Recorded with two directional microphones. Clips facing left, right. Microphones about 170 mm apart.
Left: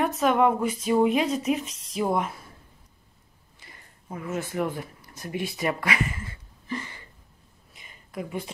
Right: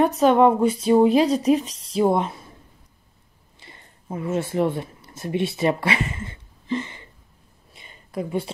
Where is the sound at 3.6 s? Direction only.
25° right (ahead or behind).